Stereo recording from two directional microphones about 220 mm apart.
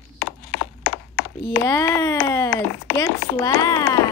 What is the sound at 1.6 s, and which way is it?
Speech, 15° left (ahead or behind).